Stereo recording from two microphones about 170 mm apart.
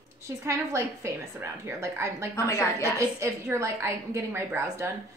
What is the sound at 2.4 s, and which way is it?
Speech, 15° left (ahead or behind).